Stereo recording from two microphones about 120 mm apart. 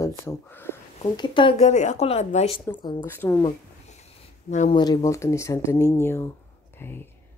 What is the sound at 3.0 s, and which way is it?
Speech, 20° left (ahead or behind).